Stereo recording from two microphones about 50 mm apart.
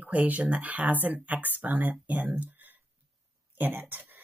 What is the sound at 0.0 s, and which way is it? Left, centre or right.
A woman's voice, right.